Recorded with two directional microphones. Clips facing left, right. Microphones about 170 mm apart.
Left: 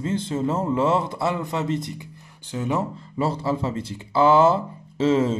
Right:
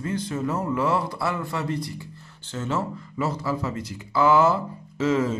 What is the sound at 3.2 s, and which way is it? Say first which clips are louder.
Speech: left 3 dB; 30° left (ahead or behind).